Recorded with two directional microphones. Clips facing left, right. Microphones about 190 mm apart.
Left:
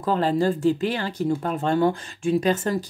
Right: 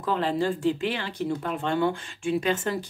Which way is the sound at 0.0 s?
40° left (ahead or behind).